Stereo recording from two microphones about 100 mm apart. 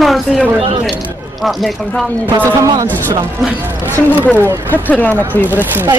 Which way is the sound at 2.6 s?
35° right (ahead or behind).